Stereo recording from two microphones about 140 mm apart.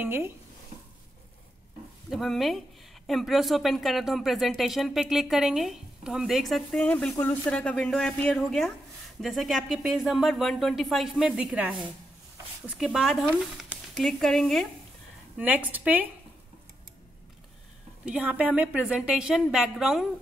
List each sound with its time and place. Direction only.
0.0 s a woman's voice: 15° right (ahead or behind)
2.0 s speech: centre (ahead or behind)
15.3 s a woman's voice: 10° right (ahead or behind)
18.0 s a woman's voice: 10° right (ahead or behind)